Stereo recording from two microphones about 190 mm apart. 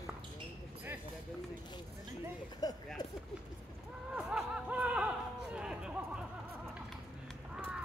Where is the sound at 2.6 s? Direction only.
20° left (ahead or behind).